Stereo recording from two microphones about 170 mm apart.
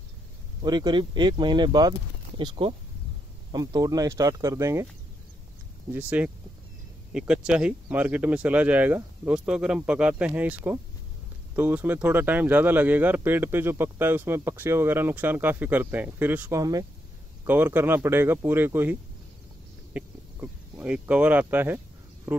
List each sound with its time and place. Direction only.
0.6 s speech: 25° right (ahead or behind)
5.9 s speech: 10° right (ahead or behind)
19.9 s a sound: 10° right (ahead or behind)